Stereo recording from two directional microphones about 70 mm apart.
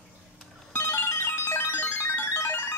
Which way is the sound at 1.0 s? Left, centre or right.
Left.